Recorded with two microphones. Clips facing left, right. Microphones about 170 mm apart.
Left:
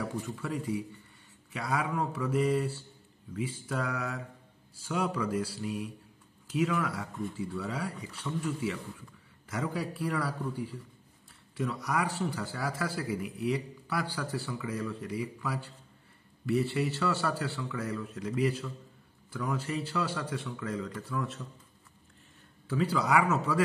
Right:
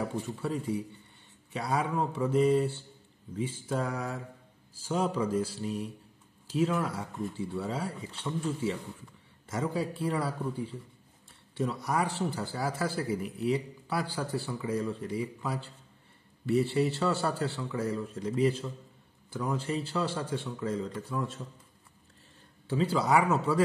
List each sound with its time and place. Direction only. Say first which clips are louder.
0.4 s a man's voice: right 2 dB; 30° right (ahead or behind)
3.3 s mantra: right 2 dB; 30° right (ahead or behind)
4.8 s a man's voice: right 2 dB; 30° right (ahead or behind)
6.4 s mantra: right 1 dB; 30° right (ahead or behind)
7.3 s a man's voice: right 2 dB; 25° right (ahead or behind)
16.7 s a man's voice: right 3 dB; 25° right (ahead or behind)
22.7 s a man's voice: right 2 dB; 25° right (ahead or behind)